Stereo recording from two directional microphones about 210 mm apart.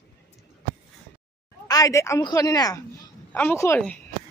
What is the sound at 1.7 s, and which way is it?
Speech, 15° left (ahead or behind).